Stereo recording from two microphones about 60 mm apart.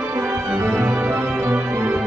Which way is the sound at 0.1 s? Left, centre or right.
Right.